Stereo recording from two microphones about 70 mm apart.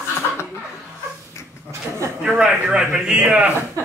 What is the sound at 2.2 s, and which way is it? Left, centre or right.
A man's voice, centre.